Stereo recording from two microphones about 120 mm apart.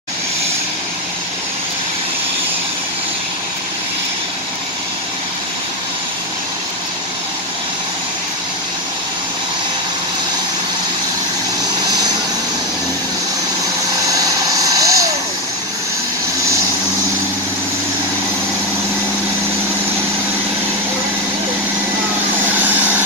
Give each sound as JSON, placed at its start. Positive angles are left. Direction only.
{"t": 14.0, "sound": "vehicle", "side_deg": -30}
{"t": 22.6, "sound": "vehicle", "side_deg": -15}